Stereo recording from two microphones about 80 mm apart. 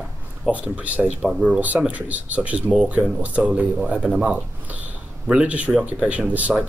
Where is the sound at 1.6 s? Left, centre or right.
Centre.